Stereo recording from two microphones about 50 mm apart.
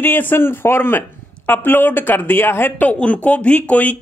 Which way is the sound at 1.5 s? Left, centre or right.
Left.